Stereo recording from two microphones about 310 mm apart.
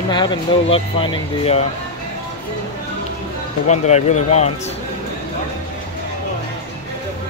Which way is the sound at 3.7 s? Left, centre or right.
Left.